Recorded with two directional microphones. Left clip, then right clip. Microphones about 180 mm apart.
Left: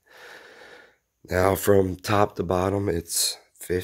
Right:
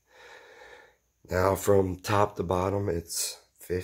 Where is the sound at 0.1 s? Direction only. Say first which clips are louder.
Left 5 dB; 55° left (ahead or behind).